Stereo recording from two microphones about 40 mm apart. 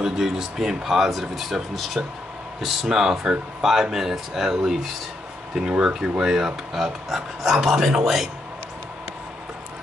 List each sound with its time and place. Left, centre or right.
0.0 s speech: centre
2.0 s speech: right
2.6 s speech: centre; by 6.2 s right
6.2 s speech: centre